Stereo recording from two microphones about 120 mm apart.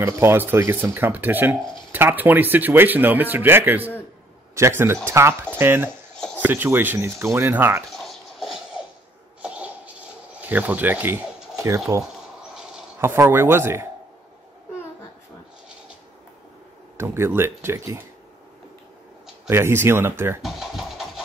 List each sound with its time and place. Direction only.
0.0 s speech: 20° right (ahead or behind)
5.9 s a sound: 10° left (ahead or behind)
6.4 s speech: 15° right (ahead or behind)
7.9 s a sound: centre (ahead or behind); by 11.8 s 25° right (ahead or behind)
13.0 s speech: 20° right (ahead or behind)
16.9 s speech: 20° right (ahead or behind)
19.5 s speech: 20° right (ahead or behind)
20.4 s speech: centre (ahead or behind)